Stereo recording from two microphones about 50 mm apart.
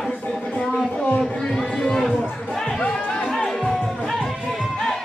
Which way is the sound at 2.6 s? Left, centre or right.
Centre.